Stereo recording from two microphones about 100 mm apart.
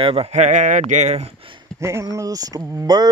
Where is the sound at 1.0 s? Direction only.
90° right.